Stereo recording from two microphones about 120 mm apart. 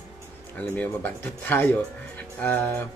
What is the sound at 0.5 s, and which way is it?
Speech, 10° left (ahead or behind).